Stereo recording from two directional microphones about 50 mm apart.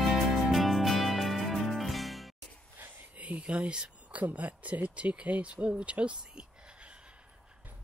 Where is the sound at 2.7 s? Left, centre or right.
Right.